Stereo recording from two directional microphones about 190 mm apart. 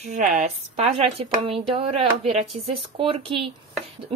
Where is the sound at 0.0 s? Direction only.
40° right (ahead or behind).